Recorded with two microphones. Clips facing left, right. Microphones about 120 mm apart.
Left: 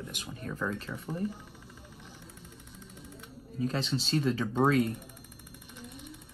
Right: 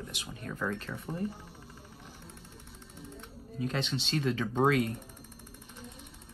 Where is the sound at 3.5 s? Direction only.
35° left (ahead or behind).